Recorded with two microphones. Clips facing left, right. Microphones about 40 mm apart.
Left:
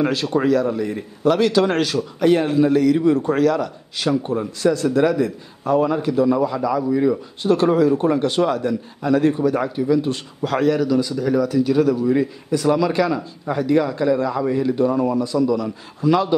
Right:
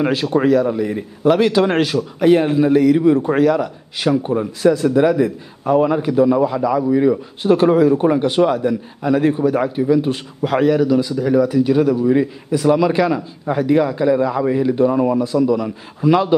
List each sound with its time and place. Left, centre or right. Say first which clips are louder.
0.0 s a man's voice: right 3 dB; centre